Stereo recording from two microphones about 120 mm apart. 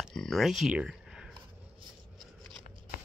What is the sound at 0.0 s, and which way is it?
Speech, centre (ahead or behind).